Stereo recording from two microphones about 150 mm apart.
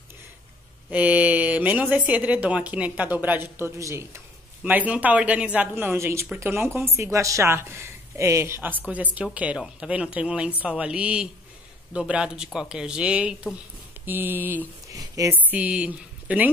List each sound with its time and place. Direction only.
0.8 s speech: 10° right (ahead or behind)
15.0 s a woman's voice: 25° right (ahead or behind)
15.5 s speech: 10° right (ahead or behind)